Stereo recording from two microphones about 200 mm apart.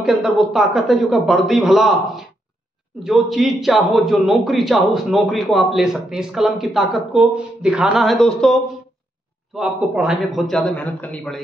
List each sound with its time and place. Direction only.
0.0 s a man's voice: centre (ahead or behind)
9.6 s a man's voice: centre (ahead or behind)